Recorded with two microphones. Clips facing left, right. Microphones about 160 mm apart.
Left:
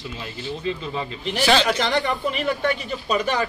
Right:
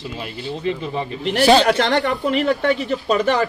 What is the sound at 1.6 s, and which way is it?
Speech, 60° right (ahead or behind).